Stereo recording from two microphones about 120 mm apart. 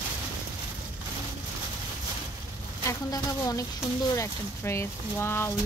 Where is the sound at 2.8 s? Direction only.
25° left (ahead or behind).